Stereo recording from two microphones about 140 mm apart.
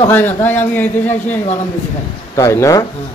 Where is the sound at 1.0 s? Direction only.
50° left (ahead or behind).